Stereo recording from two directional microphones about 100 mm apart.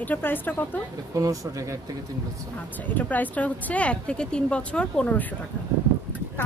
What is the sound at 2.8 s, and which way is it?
Speech, 15° left (ahead or behind).